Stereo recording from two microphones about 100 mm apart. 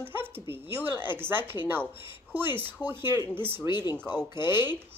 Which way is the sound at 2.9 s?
25° right (ahead or behind).